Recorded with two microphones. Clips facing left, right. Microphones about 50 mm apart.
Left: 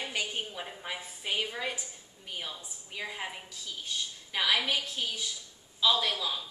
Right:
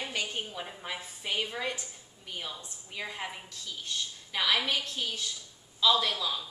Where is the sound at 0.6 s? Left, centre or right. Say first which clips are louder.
Even; centre.